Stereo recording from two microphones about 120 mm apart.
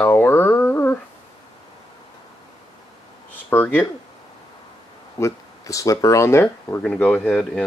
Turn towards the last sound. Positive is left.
turn(degrees=5)  # may be behind; listen again after turning